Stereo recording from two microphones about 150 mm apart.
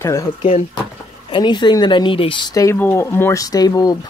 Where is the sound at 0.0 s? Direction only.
20° left (ahead or behind).